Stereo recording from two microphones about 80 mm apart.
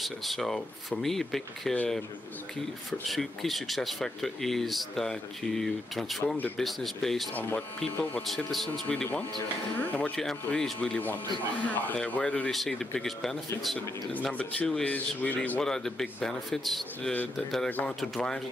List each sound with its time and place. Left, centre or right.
0.0 s speech: centre
2.9 s speech: centre
7.3 s speech: left
8.5 s speech: centre
8.8 s speech: centre
12.4 s speech: centre
14.2 s speech: centre
15.6 s speech: centre